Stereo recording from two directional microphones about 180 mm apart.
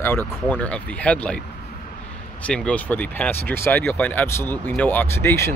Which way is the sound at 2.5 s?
5° left (ahead or behind).